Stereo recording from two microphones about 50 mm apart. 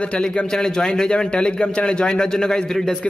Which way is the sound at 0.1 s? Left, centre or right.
Centre.